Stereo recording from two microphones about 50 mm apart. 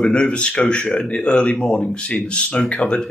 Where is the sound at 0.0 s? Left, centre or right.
Centre.